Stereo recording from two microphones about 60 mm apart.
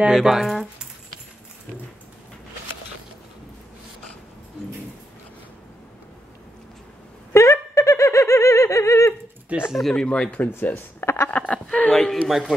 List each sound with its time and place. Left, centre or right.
0.0 s speech: centre
7.3 s giggle: left
9.7 s speech: centre
10.0 s speech: centre
10.5 s speech: left
11.2 s speech: left
12.3 s speech: centre